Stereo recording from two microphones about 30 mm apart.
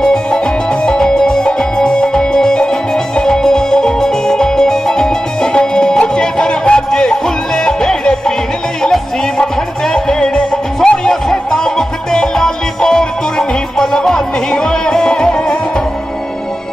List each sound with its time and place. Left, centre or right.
0.0 s music: left
2.1 s music: centre
9.9 s music: left